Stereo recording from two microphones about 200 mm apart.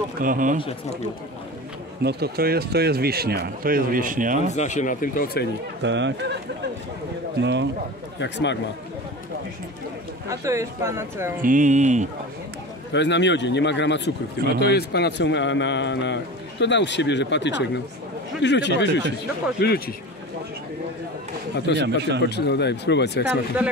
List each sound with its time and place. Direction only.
0.2 s speech: 40° right (ahead or behind)
2.0 s speech: 55° right (ahead or behind)
4.6 s speech: 35° left (ahead or behind)
5.8 s speech: 65° right (ahead or behind)
7.3 s speech: 60° right (ahead or behind)
8.2 s a man's voice: 60° left (ahead or behind)
10.2 s speech: 15° right (ahead or behind)
11.4 s speech: 40° right (ahead or behind)
12.9 s a man's voice: 60° left (ahead or behind)
21.7 s speech: 60° right (ahead or behind)
22.2 s a man's voice: 55° left (ahead or behind)
23.2 s speech: 5° right (ahead or behind)